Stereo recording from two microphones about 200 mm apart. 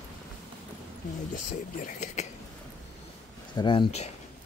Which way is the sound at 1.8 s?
35° left (ahead or behind).